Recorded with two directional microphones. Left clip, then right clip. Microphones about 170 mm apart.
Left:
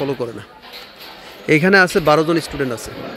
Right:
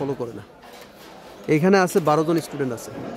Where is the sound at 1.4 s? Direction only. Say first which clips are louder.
Left 6 dB; 5° left (ahead or behind).